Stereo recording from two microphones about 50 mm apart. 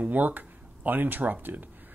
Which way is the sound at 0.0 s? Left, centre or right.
Right.